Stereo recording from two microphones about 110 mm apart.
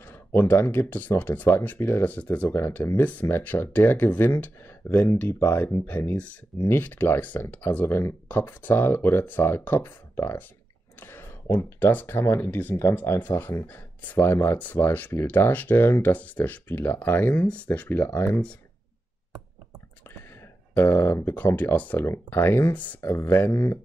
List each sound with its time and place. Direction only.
0.0 s speech: 20° left (ahead or behind)
20.7 s speech: 20° left (ahead or behind)